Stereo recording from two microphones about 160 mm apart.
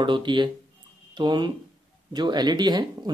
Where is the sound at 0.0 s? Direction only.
30° right (ahead or behind).